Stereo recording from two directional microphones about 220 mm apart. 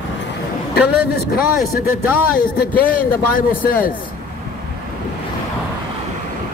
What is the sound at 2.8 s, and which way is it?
A man's voice, 40° left (ahead or behind).